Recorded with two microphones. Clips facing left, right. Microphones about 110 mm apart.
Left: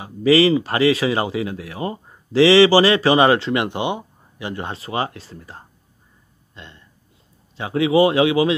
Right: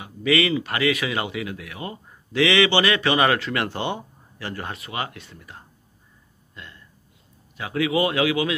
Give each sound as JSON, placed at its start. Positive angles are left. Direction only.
{"t": 0.0, "sound": "speech", "side_deg": 30}
{"t": 6.5, "sound": "a sound", "side_deg": 25}
{"t": 7.5, "sound": "speech", "side_deg": 25}